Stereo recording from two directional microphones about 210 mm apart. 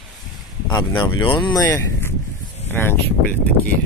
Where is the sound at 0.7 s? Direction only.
20° left (ahead or behind).